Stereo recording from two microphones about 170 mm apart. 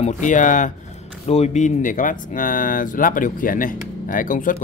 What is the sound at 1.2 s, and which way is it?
Speech, 40° left (ahead or behind).